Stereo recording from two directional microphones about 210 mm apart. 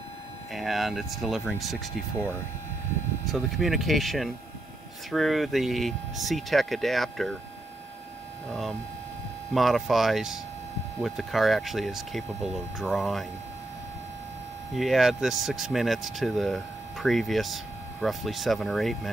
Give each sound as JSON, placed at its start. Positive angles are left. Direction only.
{"t": 0.5, "sound": "speech", "side_deg": 0}
{"t": 8.5, "sound": "speech", "side_deg": 0}
{"t": 14.8, "sound": "speech", "side_deg": 0}